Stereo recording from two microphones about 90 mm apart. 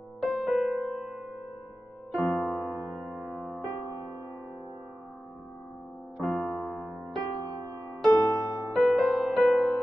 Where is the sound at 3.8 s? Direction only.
35° left (ahead or behind).